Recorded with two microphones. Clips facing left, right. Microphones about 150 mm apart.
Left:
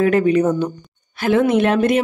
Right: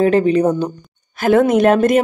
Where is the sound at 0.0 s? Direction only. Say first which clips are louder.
Right 2 dB; 30° right (ahead or behind).